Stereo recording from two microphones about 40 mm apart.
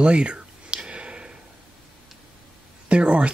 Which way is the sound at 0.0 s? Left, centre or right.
Right.